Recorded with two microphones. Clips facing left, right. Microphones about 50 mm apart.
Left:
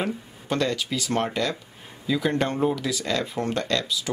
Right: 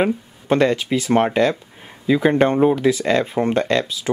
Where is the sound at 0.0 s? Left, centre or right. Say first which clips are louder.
Right 9 dB; right.